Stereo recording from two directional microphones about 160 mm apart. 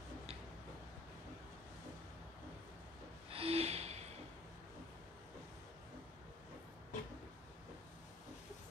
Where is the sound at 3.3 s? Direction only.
40° right (ahead or behind).